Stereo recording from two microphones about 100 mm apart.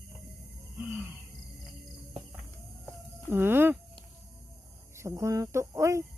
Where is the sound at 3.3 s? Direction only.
25° right (ahead or behind).